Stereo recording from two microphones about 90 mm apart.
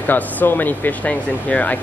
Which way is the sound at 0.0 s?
20° left (ahead or behind).